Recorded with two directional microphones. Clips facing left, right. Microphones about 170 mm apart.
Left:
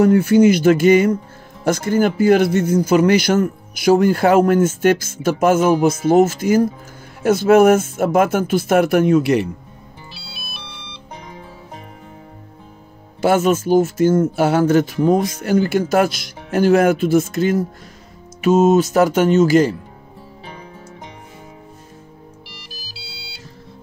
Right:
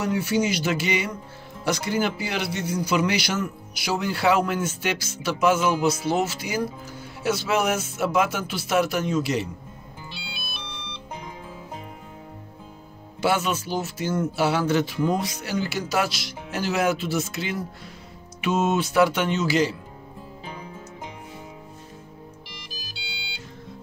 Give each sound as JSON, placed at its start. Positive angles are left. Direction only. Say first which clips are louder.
{"t": 0.0, "sound": "a man's voice", "louder": "left 12 dB", "side_deg": 50}
{"t": 10.1, "sound": "music", "louder": "right 1 dB", "side_deg": 0}
{"t": 13.2, "sound": "a man's voice", "louder": "left 8 dB", "side_deg": 50}
{"t": 22.5, "sound": "music", "louder": "left 1 dB", "side_deg": 0}